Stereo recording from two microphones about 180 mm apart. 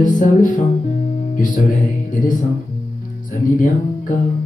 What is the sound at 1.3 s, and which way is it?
Speech, 50° left (ahead or behind).